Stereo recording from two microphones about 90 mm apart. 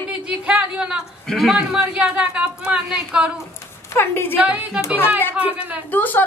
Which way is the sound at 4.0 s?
25° left (ahead or behind).